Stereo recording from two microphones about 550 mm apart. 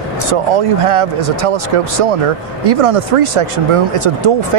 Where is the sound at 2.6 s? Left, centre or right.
Right.